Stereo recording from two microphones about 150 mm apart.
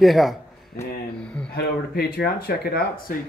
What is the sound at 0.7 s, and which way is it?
Speech, 90° left.